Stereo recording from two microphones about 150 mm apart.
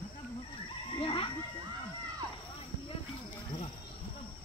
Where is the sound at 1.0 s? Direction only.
35° left (ahead or behind).